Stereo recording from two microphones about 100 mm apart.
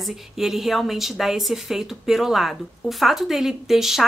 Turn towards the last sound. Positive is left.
turn(degrees=-5)  # may be behind; listen again after turning